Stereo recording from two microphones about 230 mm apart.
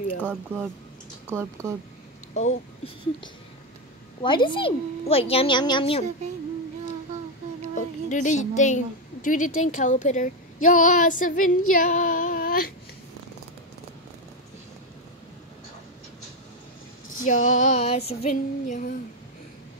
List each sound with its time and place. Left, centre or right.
0.2 s speech: centre
2.3 s speech: left
4.2 s a woman's voice: left
7.7 s a woman's voice: left
17.3 s female singing: left